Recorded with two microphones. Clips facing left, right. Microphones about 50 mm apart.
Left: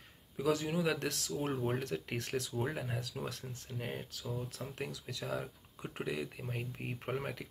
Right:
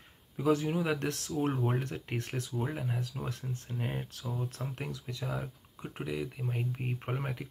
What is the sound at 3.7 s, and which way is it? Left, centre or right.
Speech, centre.